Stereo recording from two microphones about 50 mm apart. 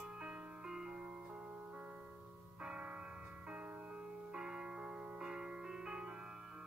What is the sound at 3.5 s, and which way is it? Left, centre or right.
Music, right.